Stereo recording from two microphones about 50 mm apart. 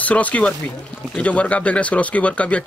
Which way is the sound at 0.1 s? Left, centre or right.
Left.